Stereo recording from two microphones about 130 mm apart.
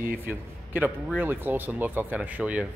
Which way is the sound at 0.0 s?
15° right (ahead or behind).